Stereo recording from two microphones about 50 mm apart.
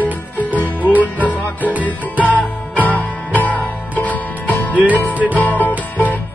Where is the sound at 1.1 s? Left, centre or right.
Left.